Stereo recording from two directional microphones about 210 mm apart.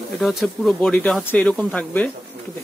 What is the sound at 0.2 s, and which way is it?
Speech, centre (ahead or behind).